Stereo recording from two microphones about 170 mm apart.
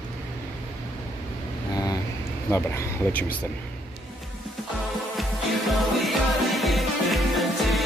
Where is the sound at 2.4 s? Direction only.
15° left (ahead or behind).